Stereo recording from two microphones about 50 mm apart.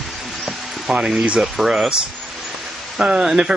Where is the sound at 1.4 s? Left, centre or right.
Centre.